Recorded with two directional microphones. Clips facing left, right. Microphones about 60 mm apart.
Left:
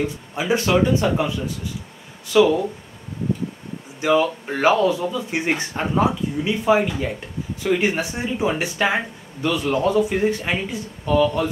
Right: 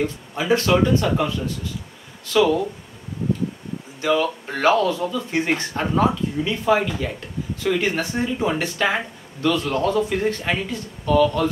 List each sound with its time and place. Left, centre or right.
0.0 s speech: centre
4.0 s speech: centre